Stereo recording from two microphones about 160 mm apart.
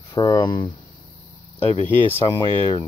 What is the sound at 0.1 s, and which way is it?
Speech, 25° left (ahead or behind).